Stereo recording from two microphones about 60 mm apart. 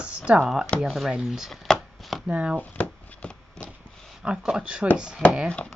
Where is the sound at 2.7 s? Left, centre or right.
Left.